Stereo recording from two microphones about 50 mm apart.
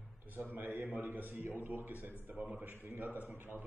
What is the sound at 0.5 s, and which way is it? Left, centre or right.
Speech, right.